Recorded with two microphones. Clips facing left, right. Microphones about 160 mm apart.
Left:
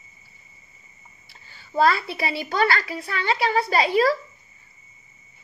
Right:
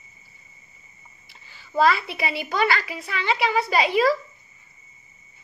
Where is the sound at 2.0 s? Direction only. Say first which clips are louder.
Left 1 dB; 30° left (ahead or behind).